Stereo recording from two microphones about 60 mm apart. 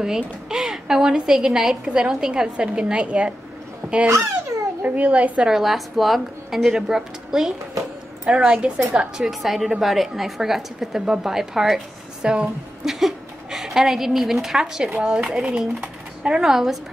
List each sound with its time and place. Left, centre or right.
0.0 s a woman's voice: centre
5.5 s a woman's voice: centre
8.5 s a woman's voice: centre
9.2 s a woman's voice: centre
15.0 s a woman's voice: right
15.2 s speech: centre